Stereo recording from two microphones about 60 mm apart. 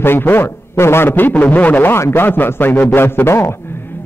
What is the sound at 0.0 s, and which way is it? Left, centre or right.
A man's voice, left.